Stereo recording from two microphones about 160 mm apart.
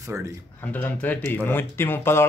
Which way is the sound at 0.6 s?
10° left (ahead or behind).